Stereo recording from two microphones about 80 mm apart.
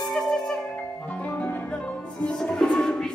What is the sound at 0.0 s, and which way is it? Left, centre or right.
Music, centre.